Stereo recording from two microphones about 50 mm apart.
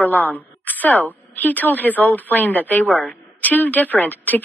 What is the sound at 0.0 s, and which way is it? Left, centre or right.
A woman's voice, left.